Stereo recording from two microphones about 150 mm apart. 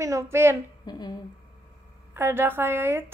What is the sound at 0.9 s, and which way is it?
Speech, 25° left (ahead or behind).